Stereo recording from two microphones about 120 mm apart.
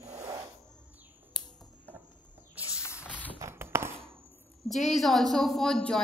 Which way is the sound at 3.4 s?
20° right (ahead or behind).